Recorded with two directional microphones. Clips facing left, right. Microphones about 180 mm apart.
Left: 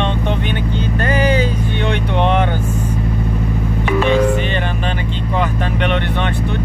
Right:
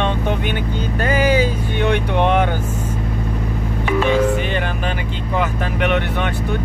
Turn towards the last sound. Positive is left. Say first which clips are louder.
# left 1 dB
turn(degrees=-10)  # may be behind; listen again after turning